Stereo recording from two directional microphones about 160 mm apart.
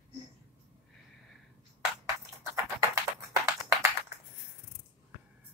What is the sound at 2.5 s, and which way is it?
Typing, 20° right (ahead or behind).